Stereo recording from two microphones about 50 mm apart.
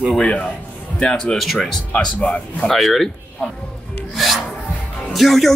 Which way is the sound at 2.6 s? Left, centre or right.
Centre.